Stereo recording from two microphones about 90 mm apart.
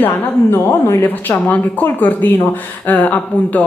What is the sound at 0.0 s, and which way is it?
A woman's voice, 25° left (ahead or behind).